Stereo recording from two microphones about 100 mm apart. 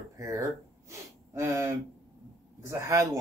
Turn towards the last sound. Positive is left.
turn(degrees=-35)  # may be behind; listen again after turning